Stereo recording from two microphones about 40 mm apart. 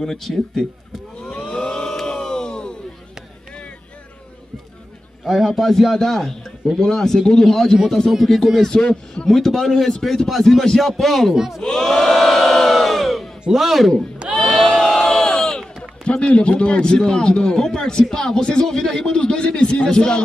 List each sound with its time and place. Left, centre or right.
0.0 s a man's voice: centre
1.3 s crowd: left
5.5 s a man's voice: centre
8.6 s a man's voice: centre
9.3 s a man's voice: centre
11.3 s speech: centre
11.6 s crowd: centre
13.5 s a man's voice: centre
14.3 s crowd: centre
16.0 s a man's voice: left